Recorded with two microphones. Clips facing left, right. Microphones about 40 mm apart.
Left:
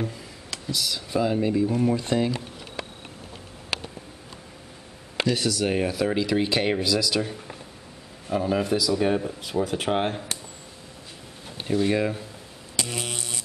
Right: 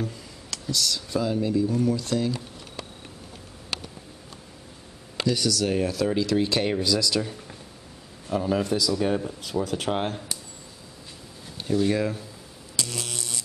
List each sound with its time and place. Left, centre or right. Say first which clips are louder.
0.0 s speech: left 1 dB; centre; by 2.9 s left
5.1 s speech: even; left
11.5 s speech: even; left
12.7 s mains hum: left 2 dB; left